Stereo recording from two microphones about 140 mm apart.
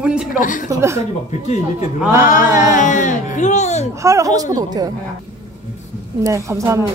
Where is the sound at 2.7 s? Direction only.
65° left (ahead or behind).